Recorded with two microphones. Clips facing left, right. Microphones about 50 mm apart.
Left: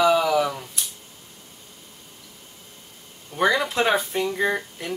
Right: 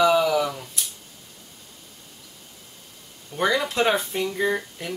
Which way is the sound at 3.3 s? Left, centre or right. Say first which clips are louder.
Left 1 dB; centre.